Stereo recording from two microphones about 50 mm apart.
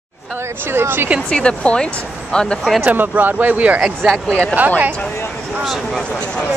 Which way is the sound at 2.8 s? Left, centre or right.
Right.